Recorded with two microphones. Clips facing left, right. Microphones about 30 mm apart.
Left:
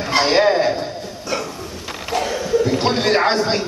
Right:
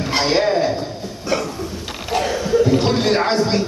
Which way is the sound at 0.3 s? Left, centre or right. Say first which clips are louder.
Left 1 dB; centre.